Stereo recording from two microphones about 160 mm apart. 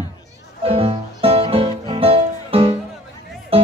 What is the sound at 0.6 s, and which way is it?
Music, 35° right (ahead or behind).